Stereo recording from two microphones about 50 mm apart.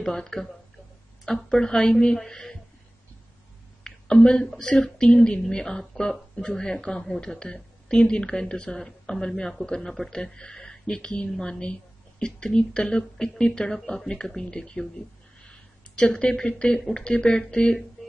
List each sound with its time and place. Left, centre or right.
0.0 s speech: centre
3.8 s a sound: centre
4.6 s speech: centre
16.1 s speech: centre